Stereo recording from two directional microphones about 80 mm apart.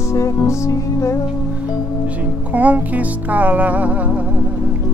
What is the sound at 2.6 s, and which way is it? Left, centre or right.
Music, centre.